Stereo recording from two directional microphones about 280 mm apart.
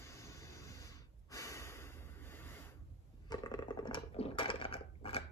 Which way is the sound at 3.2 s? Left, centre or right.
Centre.